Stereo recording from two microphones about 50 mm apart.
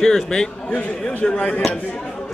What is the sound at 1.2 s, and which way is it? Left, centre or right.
Speech, left.